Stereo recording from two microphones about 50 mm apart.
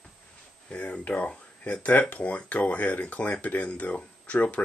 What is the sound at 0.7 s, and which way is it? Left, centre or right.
Speech, left.